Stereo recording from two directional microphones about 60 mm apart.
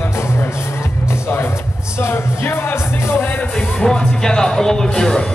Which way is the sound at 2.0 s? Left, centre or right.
Left.